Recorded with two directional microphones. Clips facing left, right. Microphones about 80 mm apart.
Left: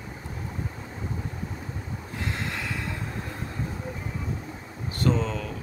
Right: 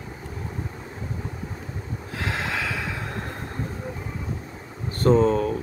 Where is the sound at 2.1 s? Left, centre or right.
Right.